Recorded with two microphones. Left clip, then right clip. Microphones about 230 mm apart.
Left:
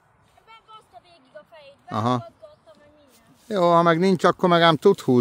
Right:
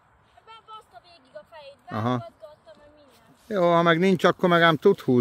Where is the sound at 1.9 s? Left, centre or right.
Centre.